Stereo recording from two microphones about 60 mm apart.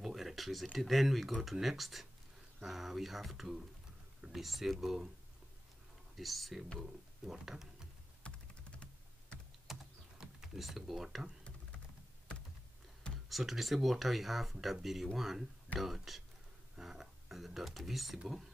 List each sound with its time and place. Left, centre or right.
0.0 s a sound: centre
0.7 s speech: centre
6.1 s speech: centre
8.2 s typing: centre
10.1 s speech: centre
13.3 s speech: centre